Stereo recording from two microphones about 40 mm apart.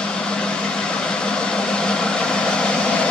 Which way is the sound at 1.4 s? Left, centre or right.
Left.